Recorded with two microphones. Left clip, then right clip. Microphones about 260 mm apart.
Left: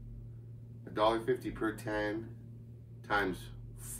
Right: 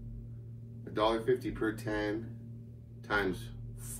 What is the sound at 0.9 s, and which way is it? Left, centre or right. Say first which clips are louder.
Speech: right 1 dB; centre.